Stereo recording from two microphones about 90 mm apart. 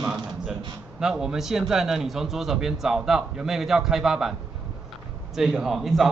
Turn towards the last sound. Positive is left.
turn(degrees=0)  # may be behind; listen again after turning